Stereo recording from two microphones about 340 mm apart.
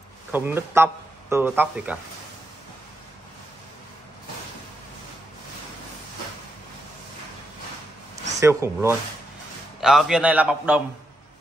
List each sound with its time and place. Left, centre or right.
0.3 s a man's voice: centre
8.4 s a man's voice: centre